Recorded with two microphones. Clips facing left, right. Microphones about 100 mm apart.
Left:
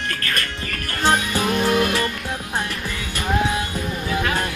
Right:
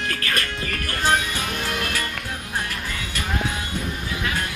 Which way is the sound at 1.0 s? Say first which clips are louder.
Left 4 dB; 25° left (ahead or behind).